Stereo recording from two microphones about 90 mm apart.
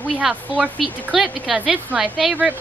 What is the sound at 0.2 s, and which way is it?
A woman's voice, 5° right (ahead or behind).